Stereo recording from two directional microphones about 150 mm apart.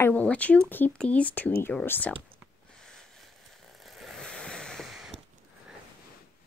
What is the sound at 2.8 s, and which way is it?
Vehicle, 5° left (ahead or behind).